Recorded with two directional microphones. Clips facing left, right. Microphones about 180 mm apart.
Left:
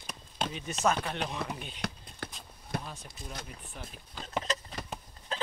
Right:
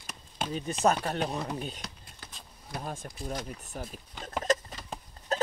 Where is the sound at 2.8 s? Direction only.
45° right (ahead or behind).